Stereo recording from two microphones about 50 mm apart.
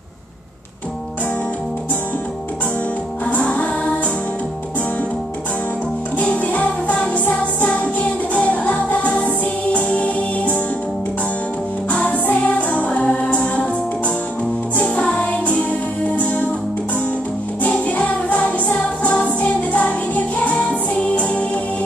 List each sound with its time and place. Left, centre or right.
3.3 s music: left
6.1 s music: left
11.9 s music: left
17.6 s music: left